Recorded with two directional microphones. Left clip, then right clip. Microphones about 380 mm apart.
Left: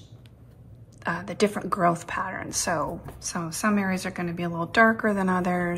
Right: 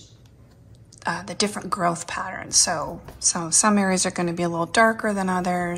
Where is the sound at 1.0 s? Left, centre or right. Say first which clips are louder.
Even; centre.